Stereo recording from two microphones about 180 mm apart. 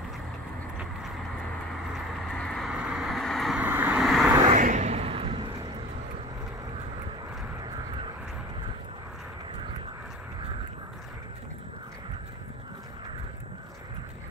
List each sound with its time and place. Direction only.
2.3 s vehicle: 5° left (ahead or behind)
3.6 s vehicle: 10° right (ahead or behind)
4.5 s a sound: 40° right (ahead or behind)
7.6 s vehicle: 25° right (ahead or behind)